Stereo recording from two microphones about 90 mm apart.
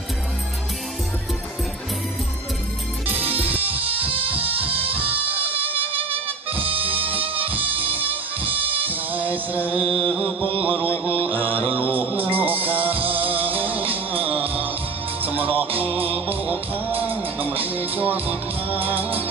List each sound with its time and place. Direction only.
3.9 s music: 90° right
4.9 s music: 20° right (ahead or behind)
5.7 s music: 90° right
8.7 s music: 20° right (ahead or behind)
10.6 s mantra: 20° right (ahead or behind)
12.4 s music: 20° right (ahead or behind)